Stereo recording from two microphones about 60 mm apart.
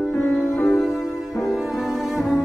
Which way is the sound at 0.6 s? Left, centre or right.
Left.